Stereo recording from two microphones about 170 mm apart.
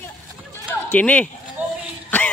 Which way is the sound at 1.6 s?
10° right (ahead or behind).